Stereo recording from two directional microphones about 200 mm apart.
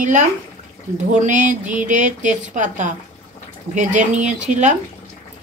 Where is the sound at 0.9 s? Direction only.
40° right (ahead or behind).